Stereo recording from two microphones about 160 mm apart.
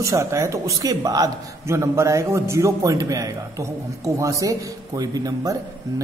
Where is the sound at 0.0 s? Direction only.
20° right (ahead or behind).